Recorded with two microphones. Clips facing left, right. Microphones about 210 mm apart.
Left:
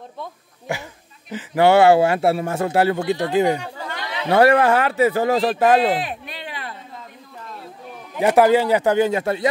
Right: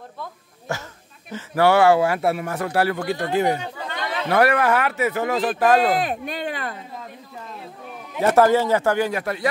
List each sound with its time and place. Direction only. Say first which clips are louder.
0.2 s a man's voice: left 2 dB; 15° left (ahead or behind)
3.6 s chatter: even; 20° right (ahead or behind)
4.3 s a man's voice: left 4 dB; 25° left (ahead or behind)
5.8 s a sound: even; 45° right (ahead or behind)
8.2 s speech: left 2 dB; 15° left (ahead or behind)